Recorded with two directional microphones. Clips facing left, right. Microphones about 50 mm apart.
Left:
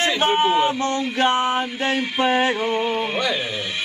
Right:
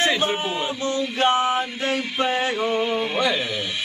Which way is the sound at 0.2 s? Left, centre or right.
Left.